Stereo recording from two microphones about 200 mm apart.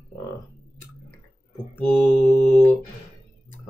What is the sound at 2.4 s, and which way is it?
Mantra, 40° left (ahead or behind).